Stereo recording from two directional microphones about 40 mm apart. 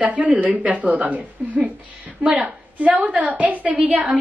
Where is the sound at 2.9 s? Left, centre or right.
Right.